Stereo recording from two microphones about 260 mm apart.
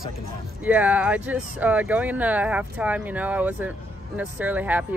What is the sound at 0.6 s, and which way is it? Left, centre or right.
Speech, centre.